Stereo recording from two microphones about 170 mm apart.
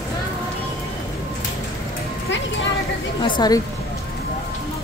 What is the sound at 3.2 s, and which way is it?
Speech, 25° left (ahead or behind).